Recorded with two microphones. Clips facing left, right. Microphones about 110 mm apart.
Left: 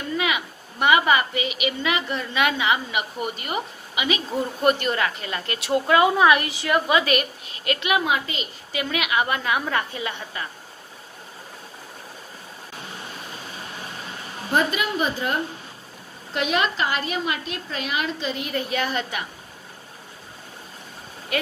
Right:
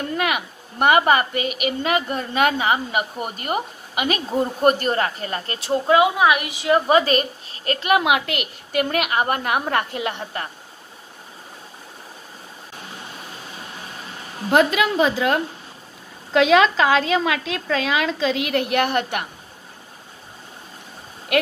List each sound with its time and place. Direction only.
0.1 s a woman's voice: 50° right (ahead or behind); by 5.9 s 30° right (ahead or behind)
5.9 s a woman's voice: 15° right (ahead or behind)
6.7 s a woman's voice: 40° right (ahead or behind)
8.0 s a woman's voice: 75° right (ahead or behind); by 10.5 s 55° right (ahead or behind)
14.5 s a woman's voice: 90° right; by 19.2 s 60° right (ahead or behind)
21.3 s speech: 65° right (ahead or behind)